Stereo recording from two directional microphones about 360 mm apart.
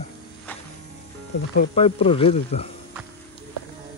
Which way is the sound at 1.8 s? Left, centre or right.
Centre.